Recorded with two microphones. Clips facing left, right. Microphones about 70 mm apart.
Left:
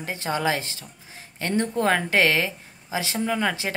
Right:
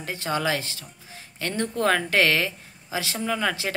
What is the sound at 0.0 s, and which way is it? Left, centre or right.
Speech, left.